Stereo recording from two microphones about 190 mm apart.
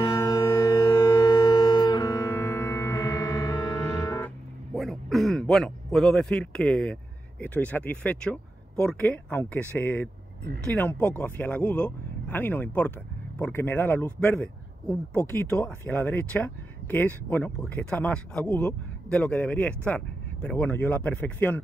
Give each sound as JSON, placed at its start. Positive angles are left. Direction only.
{"t": 0.0, "sound": "civil defense siren", "side_deg": 20}
{"t": 4.7, "sound": "a man's voice", "side_deg": 0}